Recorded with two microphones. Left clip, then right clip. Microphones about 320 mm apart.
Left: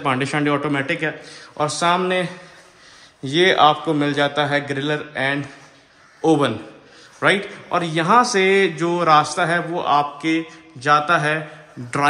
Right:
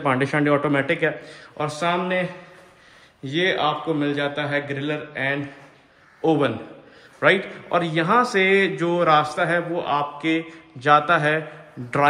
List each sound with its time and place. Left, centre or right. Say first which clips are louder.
0.0 s a man's voice: even; centre
3.3 s a man's voice: left 7 dB; centre